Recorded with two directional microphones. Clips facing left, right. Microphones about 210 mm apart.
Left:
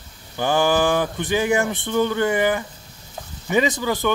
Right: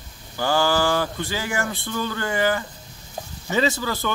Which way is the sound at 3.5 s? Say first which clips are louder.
Left 3 dB; 15° left (ahead or behind).